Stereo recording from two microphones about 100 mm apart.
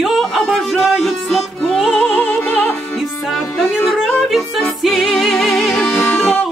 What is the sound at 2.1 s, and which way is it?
Opera, 15° left (ahead or behind).